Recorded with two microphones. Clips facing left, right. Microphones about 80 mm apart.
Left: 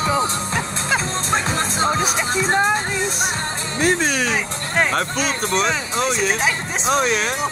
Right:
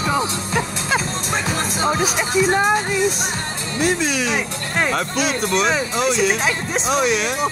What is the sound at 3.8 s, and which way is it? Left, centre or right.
Speech, left.